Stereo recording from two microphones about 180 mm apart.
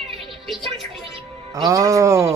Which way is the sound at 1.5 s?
20° right (ahead or behind).